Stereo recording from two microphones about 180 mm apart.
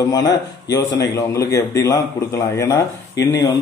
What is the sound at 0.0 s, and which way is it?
A man's voice, 20° left (ahead or behind).